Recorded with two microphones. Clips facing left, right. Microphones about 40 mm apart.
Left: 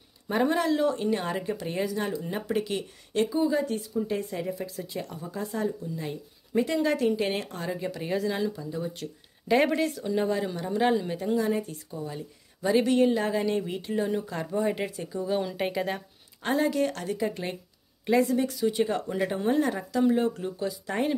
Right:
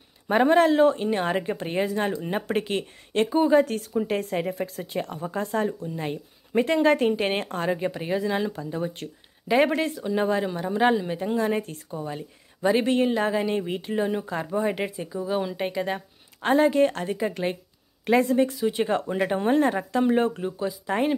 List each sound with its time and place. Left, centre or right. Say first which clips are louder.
0.3 s a woman's voice: right 6 dB; right
3.6 s a woman's voice: right 2 dB; right
8.5 s a woman's voice: right 3 dB; right
9.7 s a woman's voice: right 1 dB; right
15.1 s speech: right 1 dB; centre
16.4 s a woman's voice: right 6 dB; right
18.0 s a woman's voice: right 3 dB; right
19.3 s a woman's voice: right 5 dB; right
20.4 s a woman's voice: right 3 dB; centre